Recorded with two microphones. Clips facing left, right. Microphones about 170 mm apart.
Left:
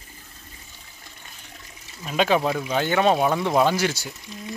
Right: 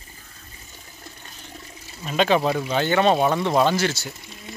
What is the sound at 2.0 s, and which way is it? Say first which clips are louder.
Speech: right 1 dB; 5° left (ahead or behind).